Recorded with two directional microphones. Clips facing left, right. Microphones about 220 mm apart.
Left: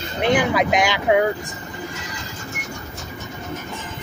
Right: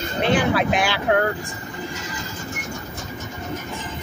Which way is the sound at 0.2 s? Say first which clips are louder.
Left 1 dB; 15° left (ahead or behind).